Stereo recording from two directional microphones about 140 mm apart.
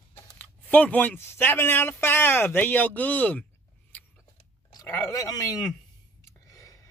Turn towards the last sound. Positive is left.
turn(degrees=25)  # may be behind; listen again after turning